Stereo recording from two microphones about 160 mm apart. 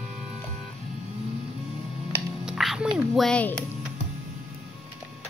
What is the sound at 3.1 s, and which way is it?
Speech, 5° left (ahead or behind).